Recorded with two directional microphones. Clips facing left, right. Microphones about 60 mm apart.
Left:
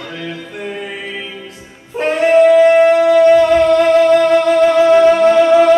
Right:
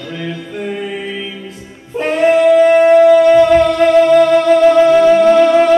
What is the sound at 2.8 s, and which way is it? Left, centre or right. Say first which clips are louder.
Music: right 2 dB; centre.